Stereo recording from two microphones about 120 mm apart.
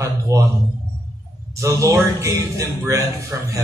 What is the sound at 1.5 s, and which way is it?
A man's voice, 25° right (ahead or behind).